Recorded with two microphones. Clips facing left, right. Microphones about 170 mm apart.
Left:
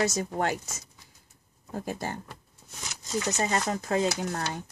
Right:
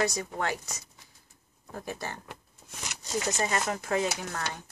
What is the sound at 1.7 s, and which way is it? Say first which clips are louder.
Speech: left 4 dB; 30° left (ahead or behind).